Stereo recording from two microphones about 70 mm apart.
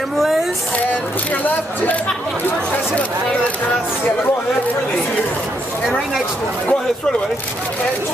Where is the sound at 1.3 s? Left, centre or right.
Left.